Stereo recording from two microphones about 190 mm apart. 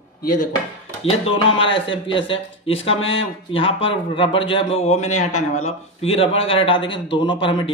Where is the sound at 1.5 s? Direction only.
25° left (ahead or behind).